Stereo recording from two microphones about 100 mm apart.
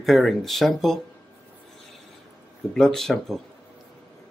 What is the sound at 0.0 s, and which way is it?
Speech, centre (ahead or behind).